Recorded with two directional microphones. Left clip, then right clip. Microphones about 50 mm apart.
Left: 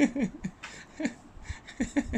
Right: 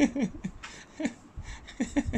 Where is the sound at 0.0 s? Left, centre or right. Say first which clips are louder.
Even; right.